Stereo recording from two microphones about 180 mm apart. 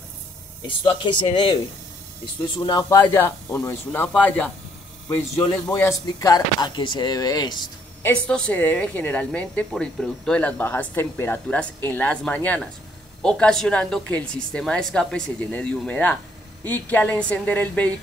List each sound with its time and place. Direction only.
0.7 s speech: 25° left (ahead or behind)
2.6 s speech: 25° left (ahead or behind)
3.0 s a woman's voice: 10° left (ahead or behind)
5.8 s speech: 15° left (ahead or behind)
8.0 s a woman's voice: 5° left (ahead or behind)